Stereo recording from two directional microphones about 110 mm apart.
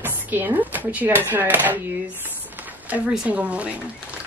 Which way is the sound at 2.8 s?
15° right (ahead or behind).